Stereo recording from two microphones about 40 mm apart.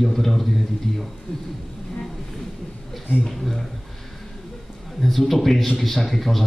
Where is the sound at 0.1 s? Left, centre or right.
Centre.